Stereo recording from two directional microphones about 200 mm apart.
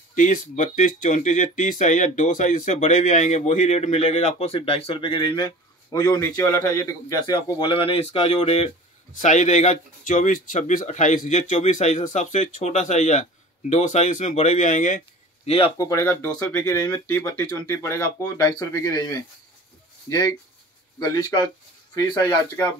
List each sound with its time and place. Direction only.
0.1 s speech: 40° left (ahead or behind)
15.8 s speech: 15° left (ahead or behind)